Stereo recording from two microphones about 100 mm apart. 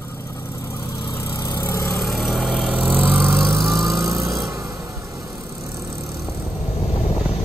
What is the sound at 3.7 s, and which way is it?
Vehicle, centre (ahead or behind).